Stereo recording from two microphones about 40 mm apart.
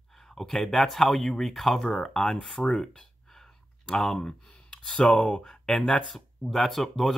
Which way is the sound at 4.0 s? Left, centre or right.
Centre.